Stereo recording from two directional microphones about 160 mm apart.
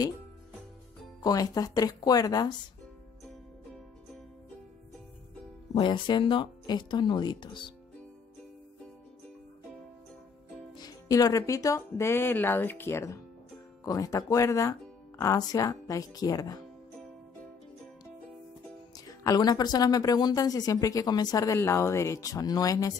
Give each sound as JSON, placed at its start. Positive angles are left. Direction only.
{"t": 1.2, "sound": "speech", "side_deg": 20}
{"t": 5.8, "sound": "speech", "side_deg": 30}
{"t": 10.8, "sound": "speech", "side_deg": 25}
{"t": 18.9, "sound": "speech", "side_deg": 25}